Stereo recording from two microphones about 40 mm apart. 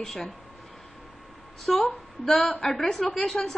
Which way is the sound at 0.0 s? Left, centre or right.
Centre.